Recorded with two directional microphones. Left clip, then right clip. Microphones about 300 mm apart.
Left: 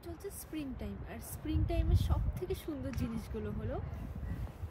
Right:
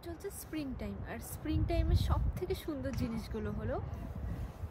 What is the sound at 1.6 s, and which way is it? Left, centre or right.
Speech, centre.